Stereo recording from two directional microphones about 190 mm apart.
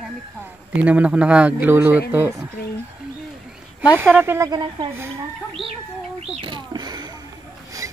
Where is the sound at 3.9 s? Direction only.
10° right (ahead or behind).